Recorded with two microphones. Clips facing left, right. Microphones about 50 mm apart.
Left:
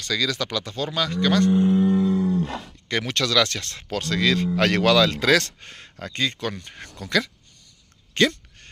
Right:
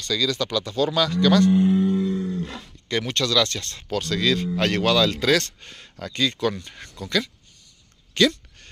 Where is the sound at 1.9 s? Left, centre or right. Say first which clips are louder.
Left 3 dB; centre.